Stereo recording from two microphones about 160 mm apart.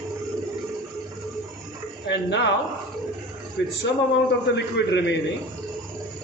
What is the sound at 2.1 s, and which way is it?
Speech, 90° left.